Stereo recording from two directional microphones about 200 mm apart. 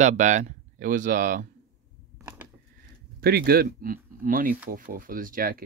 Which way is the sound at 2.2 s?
10° right (ahead or behind).